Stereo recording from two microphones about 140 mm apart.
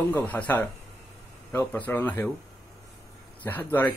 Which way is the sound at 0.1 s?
10° left (ahead or behind).